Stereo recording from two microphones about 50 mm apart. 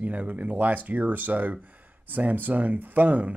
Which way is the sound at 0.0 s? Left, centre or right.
Right.